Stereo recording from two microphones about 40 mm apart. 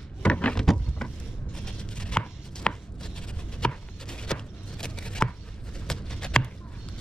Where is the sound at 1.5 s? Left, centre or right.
Left.